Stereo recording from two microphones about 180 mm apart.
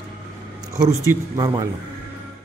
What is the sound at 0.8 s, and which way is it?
Speech, 20° right (ahead or behind).